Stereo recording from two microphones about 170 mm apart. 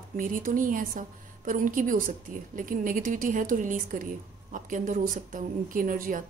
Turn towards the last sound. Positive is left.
turn(degrees=-55)  # may be behind; listen again after turning